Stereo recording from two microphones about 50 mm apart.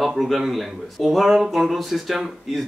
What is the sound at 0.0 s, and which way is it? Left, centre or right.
Speech, centre.